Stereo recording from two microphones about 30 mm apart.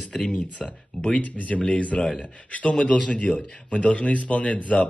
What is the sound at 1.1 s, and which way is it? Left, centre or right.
Speech, left.